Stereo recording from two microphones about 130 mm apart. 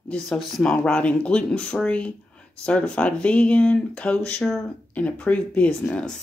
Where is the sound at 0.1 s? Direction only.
Centre (ahead or behind).